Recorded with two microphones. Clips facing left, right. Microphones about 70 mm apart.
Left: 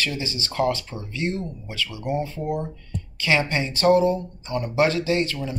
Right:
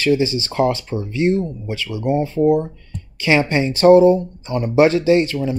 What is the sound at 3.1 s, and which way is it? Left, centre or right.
Speech, right.